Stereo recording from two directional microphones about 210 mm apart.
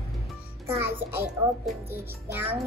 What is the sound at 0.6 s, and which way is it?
Speech, 10° right (ahead or behind).